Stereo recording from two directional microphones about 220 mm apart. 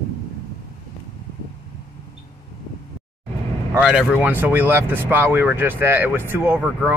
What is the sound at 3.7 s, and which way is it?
Speech, 5° right (ahead or behind).